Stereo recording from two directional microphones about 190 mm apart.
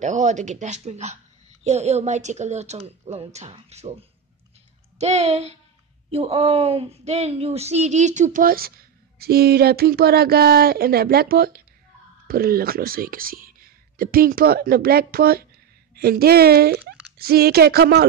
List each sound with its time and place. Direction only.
0.0 s speech: 40° right (ahead or behind); by 18.0 s 55° right (ahead or behind)